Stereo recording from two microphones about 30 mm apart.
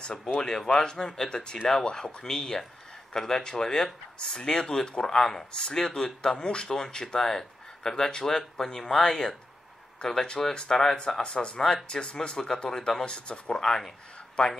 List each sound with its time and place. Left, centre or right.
0.4 s speech: left
9.1 s speech: centre
10.0 s speech: left
12.5 s speech: left
13.0 s speech: left
13.6 s speech: centre
14.4 s speech: left